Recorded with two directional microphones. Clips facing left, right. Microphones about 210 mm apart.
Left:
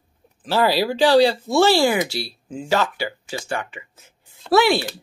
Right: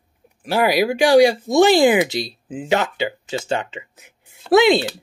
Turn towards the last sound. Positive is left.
turn(degrees=-20)  # may be behind; listen again after turning